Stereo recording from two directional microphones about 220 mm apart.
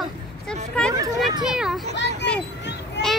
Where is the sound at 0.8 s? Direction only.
5° left (ahead or behind).